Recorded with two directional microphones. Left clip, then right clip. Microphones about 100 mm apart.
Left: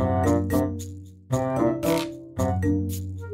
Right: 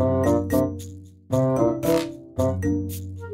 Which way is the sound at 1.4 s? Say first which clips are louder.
Right 2 dB; 40° left (ahead or behind).